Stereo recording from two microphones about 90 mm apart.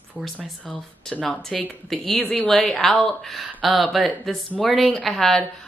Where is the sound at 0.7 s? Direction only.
15° left (ahead or behind).